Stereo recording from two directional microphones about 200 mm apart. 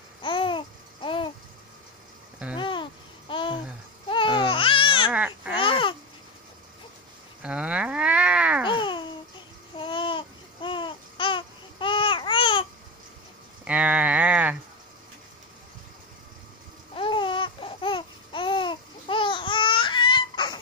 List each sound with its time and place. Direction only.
0.2 s babbling: 25° left (ahead or behind)
2.5 s babbling: 25° left (ahead or behind)
5.1 s babbling: 5° right (ahead or behind)
5.6 s babbling: 25° left (ahead or behind)
7.4 s a sound: 5° right (ahead or behind)
8.6 s babbling: 25° left (ahead or behind)
13.7 s a sound: 5° right (ahead or behind)
16.9 s babbling: 25° left (ahead or behind)